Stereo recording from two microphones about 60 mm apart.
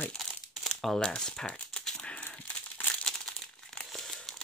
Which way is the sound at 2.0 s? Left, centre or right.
Centre.